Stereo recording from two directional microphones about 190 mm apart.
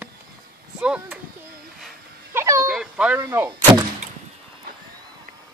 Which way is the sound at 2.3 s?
15° right (ahead or behind).